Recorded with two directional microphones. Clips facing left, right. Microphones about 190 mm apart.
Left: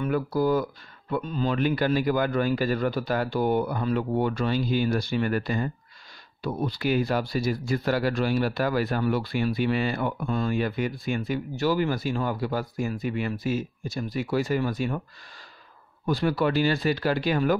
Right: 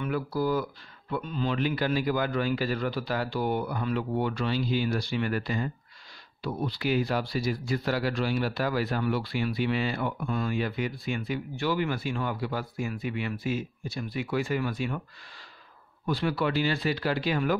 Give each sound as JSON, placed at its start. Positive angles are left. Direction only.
{"t": 0.0, "sound": "a man's voice", "side_deg": 45}
{"t": 16.1, "sound": "a man's voice", "side_deg": 45}